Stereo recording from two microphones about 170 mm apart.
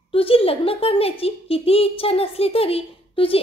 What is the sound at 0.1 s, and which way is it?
Speech, 35° left (ahead or behind).